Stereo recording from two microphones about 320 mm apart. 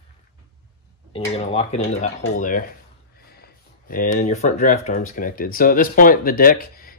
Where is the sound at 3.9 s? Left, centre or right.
Left.